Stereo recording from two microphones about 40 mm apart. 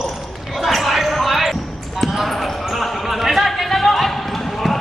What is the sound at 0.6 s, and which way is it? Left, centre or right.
Basketball bounce, centre.